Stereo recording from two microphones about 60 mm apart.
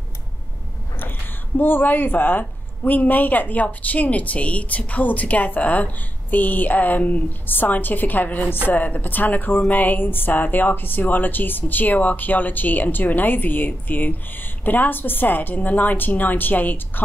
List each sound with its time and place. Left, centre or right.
1.6 s a woman's voice: left